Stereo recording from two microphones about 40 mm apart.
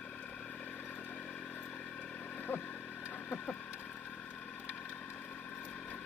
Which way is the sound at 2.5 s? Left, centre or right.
Left.